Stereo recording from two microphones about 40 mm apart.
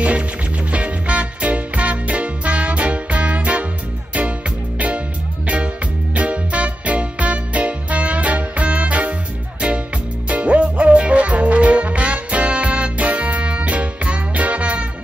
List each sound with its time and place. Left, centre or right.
0.7 s music: right
4.7 s music: right
6.1 s music: right
10.2 s music: right